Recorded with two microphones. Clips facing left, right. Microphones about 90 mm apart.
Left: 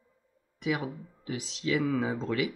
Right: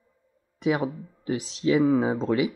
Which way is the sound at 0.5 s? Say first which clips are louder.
Right 6 dB; 35° right (ahead or behind).